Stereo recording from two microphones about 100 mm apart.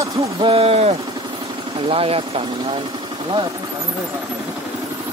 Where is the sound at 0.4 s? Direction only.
65° right (ahead or behind); by 0.9 s 85° right.